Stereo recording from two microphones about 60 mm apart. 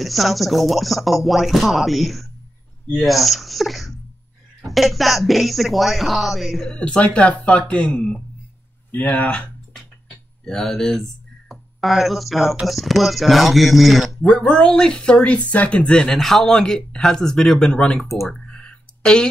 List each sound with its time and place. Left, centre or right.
0.0 s speech: centre
6.7 s speech: centre
8.9 s speech: left
9.8 s a sound: centre
12.6 s speech: centre
14.4 s speech: centre
18.4 s a sound: centre